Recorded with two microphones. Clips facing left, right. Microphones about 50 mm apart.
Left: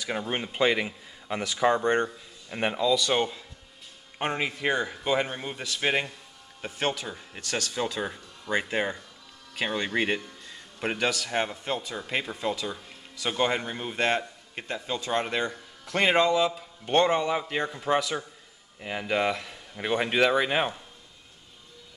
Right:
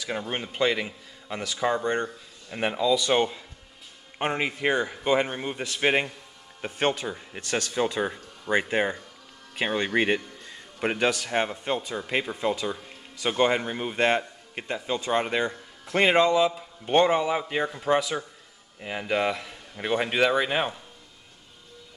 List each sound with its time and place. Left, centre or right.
0.0 s a man's voice: centre
2.5 s speech: centre
5.6 s a man's voice: right
5.9 s speech: centre
8.0 s a man's voice: centre